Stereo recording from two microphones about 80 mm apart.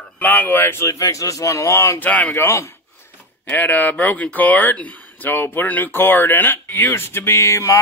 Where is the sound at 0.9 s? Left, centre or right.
Left.